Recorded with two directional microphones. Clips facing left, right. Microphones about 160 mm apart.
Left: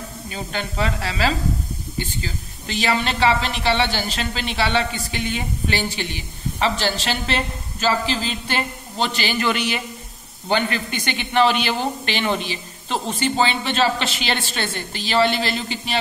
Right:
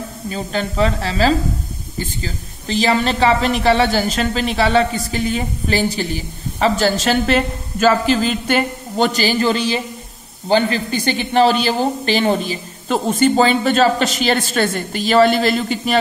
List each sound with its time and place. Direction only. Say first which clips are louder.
0.3 s speech: right 6 dB; 40° right (ahead or behind)